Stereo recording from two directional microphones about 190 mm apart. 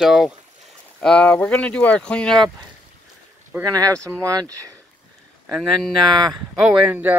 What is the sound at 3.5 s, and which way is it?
Speech, 15° right (ahead or behind).